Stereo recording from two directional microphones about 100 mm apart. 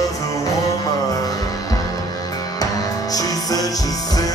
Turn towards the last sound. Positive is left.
turn(degrees=35)  # may be behind; listen again after turning